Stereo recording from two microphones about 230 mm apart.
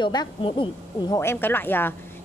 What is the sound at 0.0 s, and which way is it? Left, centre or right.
A woman's voice, centre.